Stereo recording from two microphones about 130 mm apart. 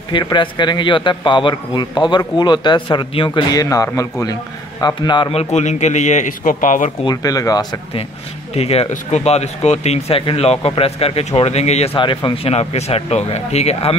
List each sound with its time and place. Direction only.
0.1 s a man's voice: 35° left (ahead or behind)
5.3 s a man's voice: 55° left (ahead or behind); by 6.9 s 85° left
7.1 s speech: 30° left (ahead or behind)
8.5 s speech: 50° left (ahead or behind)
12.0 s a man's voice: 40° left (ahead or behind)
12.5 s a man's voice: 55° left (ahead or behind)